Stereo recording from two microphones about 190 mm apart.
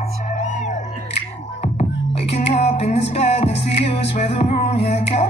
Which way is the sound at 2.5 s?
35° left (ahead or behind).